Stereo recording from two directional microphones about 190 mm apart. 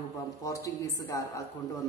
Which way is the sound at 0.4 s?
15° left (ahead or behind).